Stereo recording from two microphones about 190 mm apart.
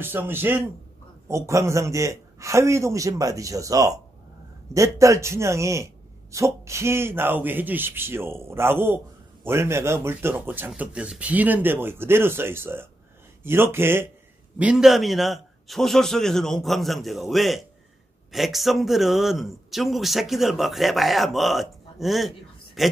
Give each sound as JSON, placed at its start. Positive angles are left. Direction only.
{"t": 0.0, "sound": "a man's voice", "side_deg": -10}